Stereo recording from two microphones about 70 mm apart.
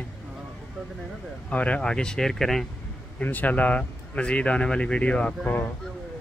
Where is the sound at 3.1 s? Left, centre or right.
Left.